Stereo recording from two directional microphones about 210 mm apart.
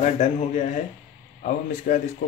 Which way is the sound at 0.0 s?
30° left (ahead or behind).